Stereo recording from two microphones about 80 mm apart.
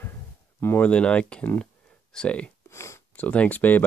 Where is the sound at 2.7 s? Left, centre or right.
Left.